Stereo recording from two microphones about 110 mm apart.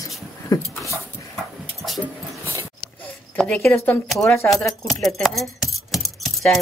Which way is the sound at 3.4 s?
10° left (ahead or behind).